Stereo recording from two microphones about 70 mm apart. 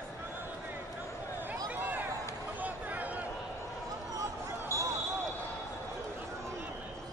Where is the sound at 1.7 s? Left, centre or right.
Right.